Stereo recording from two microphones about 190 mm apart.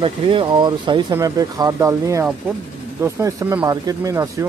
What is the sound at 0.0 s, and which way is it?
Speech, 25° right (ahead or behind).